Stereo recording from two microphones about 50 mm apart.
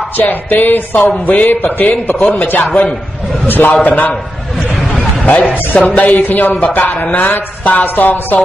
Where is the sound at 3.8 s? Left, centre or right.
Left.